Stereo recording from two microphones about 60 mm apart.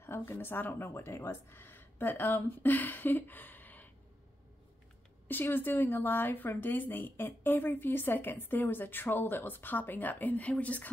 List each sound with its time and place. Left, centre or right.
0.0 s speech: left
5.3 s speech: left